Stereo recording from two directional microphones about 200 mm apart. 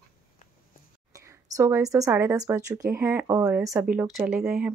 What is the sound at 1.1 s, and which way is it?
Speech, 15° right (ahead or behind).